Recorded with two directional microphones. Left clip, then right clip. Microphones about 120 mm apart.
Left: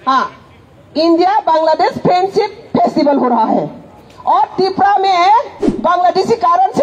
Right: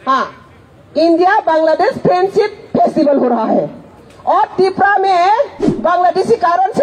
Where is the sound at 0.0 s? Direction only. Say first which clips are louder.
Left 1 dB; 15° right (ahead or behind).